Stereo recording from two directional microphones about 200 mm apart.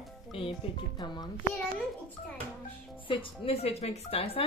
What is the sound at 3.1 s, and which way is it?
A woman's voice, 30° left (ahead or behind).